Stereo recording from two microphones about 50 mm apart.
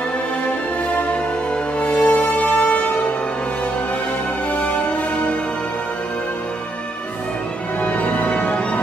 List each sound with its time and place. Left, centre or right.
1.8 s music: left
4.5 s music: left
7.8 s music: left